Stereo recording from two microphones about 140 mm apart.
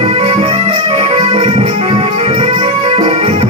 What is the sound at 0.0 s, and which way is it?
Music, 45° right (ahead or behind).